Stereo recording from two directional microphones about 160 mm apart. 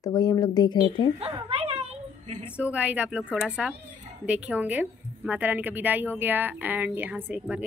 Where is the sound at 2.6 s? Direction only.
10° right (ahead or behind).